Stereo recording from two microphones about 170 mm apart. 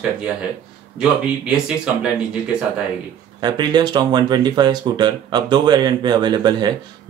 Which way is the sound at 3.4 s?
25° right (ahead or behind).